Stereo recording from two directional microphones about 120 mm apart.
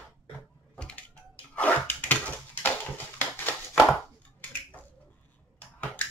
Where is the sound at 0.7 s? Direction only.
10° left (ahead or behind).